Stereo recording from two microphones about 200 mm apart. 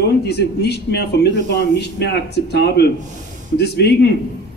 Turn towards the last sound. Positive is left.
turn(degrees=55)  # may be behind; listen again after turning